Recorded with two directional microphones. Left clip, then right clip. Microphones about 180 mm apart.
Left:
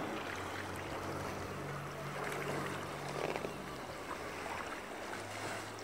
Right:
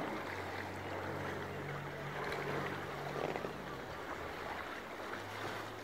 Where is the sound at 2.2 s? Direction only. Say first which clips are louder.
Even; 60° left (ahead or behind).